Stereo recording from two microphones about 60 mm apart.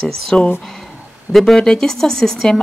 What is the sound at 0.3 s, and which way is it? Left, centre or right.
Speech, centre.